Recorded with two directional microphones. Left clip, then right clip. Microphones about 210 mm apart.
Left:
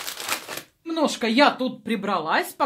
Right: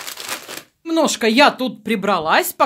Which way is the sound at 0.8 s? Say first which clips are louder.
Right 7 dB; 50° right (ahead or behind).